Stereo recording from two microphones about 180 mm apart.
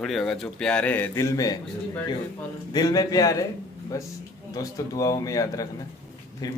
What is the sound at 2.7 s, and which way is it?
A man's voice, 20° left (ahead or behind).